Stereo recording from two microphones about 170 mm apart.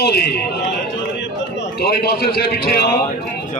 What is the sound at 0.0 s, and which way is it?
Speech, 70° left (ahead or behind).